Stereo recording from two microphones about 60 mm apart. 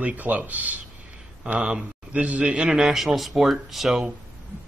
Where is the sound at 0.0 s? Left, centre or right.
Right.